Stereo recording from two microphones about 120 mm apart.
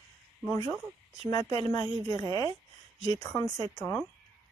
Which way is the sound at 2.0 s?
50° right (ahead or behind).